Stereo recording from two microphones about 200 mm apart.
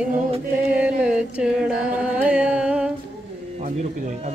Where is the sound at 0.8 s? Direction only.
5° right (ahead or behind).